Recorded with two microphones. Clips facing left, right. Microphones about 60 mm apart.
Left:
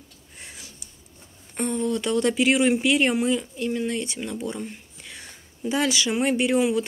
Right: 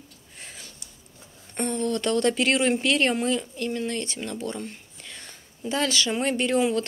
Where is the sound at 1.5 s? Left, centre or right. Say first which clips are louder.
Left 1 dB; centre.